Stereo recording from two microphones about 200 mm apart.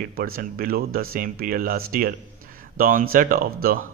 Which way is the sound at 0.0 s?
45° right (ahead or behind).